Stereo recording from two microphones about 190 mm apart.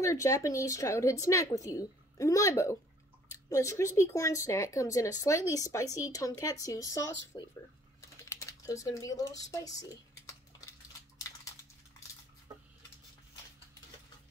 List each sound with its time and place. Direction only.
0.0 s speech: 15° left (ahead or behind)
8.2 s typing: 15° left (ahead or behind)
12.5 s dishes: 20° right (ahead or behind)